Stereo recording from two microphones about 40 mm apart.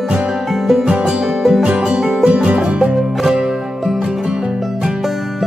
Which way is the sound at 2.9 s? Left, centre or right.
Centre.